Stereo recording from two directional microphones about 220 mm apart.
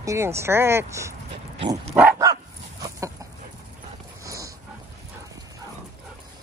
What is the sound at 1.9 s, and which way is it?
Dog, 10° right (ahead or behind).